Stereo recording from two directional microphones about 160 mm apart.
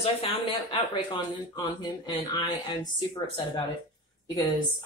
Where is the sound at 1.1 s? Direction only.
30° left (ahead or behind).